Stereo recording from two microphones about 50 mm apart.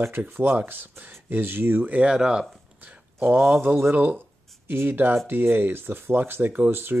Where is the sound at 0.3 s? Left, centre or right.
Right.